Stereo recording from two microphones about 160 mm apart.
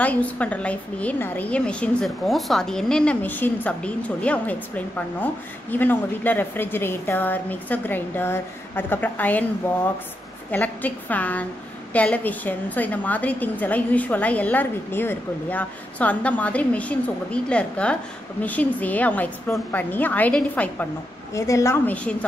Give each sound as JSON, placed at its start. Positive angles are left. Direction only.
{"t": 0.0, "sound": "a woman's voice", "side_deg": 10}
{"t": 10.5, "sound": "a woman's voice", "side_deg": 10}
{"t": 21.3, "sound": "a woman's voice", "side_deg": 20}